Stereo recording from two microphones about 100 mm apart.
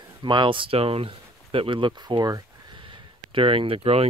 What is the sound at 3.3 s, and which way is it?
Speech, 60° right (ahead or behind).